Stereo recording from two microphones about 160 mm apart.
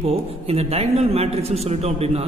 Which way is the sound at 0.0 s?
40° right (ahead or behind).